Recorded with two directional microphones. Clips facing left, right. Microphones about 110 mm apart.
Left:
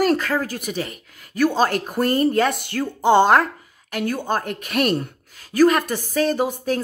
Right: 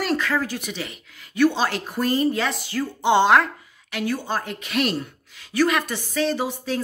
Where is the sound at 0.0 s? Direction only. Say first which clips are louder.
Left 4 dB; 45° left (ahead or behind).